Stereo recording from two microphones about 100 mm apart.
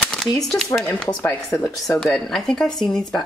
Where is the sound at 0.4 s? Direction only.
5° left (ahead or behind).